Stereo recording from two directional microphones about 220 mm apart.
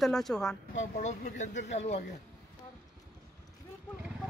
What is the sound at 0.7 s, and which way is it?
Speech, 35° left (ahead or behind).